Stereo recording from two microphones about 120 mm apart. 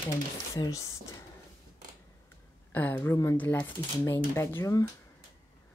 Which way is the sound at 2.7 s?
15° left (ahead or behind).